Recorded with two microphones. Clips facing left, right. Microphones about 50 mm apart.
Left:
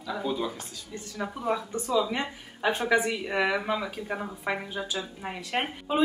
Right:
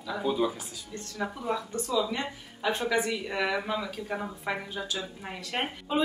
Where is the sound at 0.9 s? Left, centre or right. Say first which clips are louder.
Even; centre.